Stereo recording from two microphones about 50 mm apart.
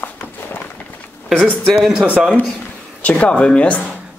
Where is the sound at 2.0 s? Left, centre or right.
Right.